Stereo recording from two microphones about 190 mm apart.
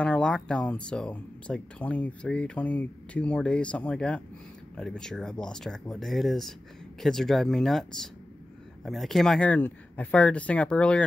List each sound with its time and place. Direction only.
0.0 s speech: 5° left (ahead or behind)